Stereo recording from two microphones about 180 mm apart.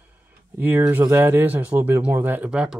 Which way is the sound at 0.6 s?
10° right (ahead or behind).